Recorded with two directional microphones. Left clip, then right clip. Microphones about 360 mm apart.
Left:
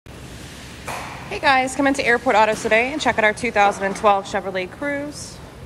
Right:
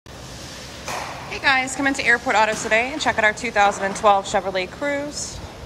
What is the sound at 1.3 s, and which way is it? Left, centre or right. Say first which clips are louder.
A woman's voice: left 2 dB; centre.